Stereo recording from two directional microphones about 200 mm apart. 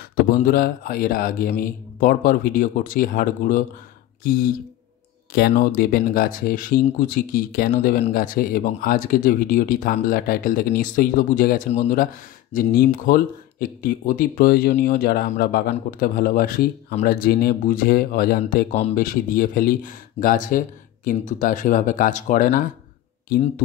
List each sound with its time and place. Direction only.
0.1 s speech: 45° left (ahead or behind)